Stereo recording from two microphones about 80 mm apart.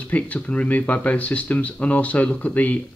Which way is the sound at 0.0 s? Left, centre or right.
Centre.